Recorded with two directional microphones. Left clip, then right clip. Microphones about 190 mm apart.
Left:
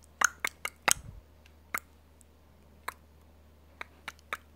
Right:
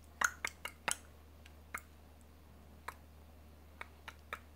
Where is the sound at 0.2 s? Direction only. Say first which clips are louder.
Left 7 dB; 40° left (ahead or behind).